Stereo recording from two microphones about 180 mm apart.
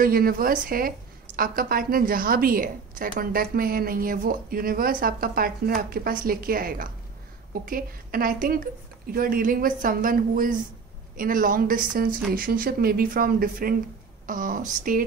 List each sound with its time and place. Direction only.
0.0 s a woman's voice: 55° right (ahead or behind)